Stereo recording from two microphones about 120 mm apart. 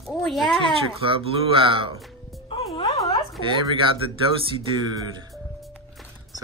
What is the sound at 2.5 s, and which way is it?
Music, 50° left (ahead or behind).